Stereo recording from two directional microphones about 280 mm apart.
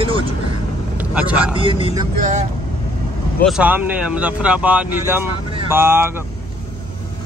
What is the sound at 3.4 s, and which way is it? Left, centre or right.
Speech, centre.